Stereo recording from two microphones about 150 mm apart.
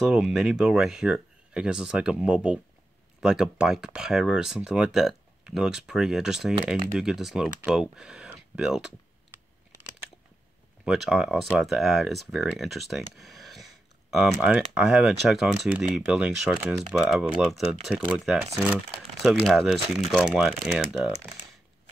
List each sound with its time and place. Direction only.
0.0 s speech: 5° right (ahead or behind)
10.9 s speech: 5° right (ahead or behind)